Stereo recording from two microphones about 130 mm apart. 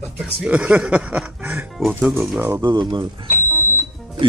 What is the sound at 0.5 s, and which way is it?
Speech, 10° right (ahead or behind).